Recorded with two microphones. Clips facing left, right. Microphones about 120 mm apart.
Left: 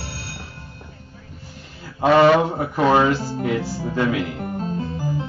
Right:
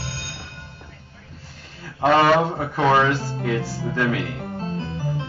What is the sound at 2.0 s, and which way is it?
Speech, 10° left (ahead or behind).